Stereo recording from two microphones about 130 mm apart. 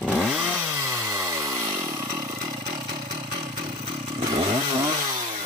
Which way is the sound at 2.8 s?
40° right (ahead or behind).